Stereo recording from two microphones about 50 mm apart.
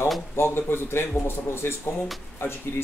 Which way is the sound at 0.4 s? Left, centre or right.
Left.